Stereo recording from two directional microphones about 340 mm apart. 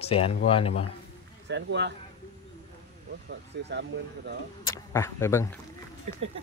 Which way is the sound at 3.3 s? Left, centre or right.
Right.